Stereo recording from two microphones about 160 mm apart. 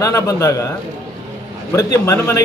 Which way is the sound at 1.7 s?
20° left (ahead or behind).